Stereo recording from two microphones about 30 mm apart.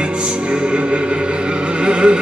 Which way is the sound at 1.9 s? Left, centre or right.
Right.